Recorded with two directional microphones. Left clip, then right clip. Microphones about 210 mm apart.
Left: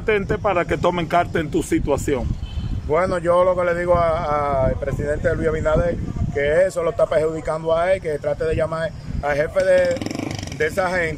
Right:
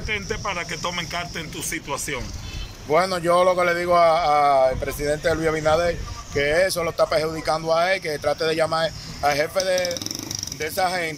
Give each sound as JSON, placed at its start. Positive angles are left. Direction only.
{"t": 0.0, "sound": "speech", "side_deg": 55}
{"t": 2.9, "sound": "a man's voice", "side_deg": 5}